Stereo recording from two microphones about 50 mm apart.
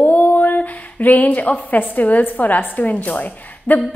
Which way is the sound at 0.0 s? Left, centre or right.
Left.